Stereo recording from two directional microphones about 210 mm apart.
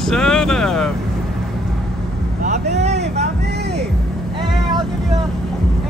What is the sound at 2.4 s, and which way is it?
Vehicle, 35° right (ahead or behind).